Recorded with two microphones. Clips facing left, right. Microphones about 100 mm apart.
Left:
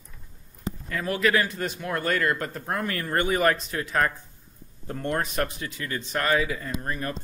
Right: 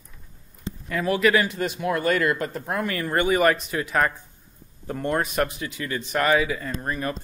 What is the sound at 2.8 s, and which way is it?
Speech, 90° right.